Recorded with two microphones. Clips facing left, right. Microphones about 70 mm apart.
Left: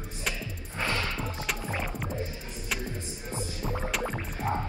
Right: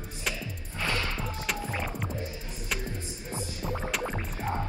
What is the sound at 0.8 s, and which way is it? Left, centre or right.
Music, left.